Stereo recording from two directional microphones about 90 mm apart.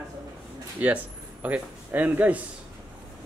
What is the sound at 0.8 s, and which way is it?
A man's voice, 15° right (ahead or behind).